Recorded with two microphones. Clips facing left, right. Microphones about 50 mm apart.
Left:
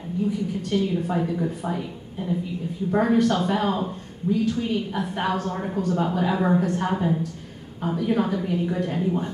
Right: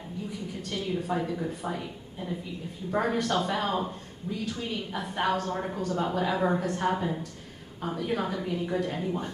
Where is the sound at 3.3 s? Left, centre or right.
Centre.